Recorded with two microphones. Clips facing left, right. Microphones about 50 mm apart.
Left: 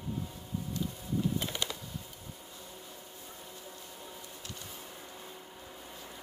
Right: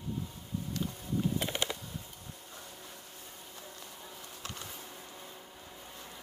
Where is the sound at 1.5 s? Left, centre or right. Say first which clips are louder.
Right 2 dB; right.